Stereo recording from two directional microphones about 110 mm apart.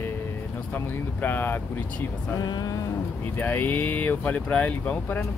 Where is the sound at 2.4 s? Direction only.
40° left (ahead or behind).